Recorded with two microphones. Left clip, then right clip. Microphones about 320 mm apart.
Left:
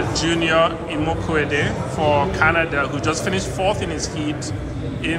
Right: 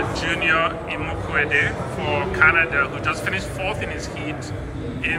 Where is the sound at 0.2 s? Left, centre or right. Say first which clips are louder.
Left 3 dB; centre.